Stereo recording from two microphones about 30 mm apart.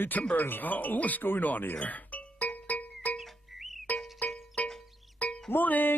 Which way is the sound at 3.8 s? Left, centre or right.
Left.